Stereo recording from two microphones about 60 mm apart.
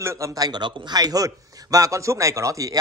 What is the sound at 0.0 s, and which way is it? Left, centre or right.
Speech, right.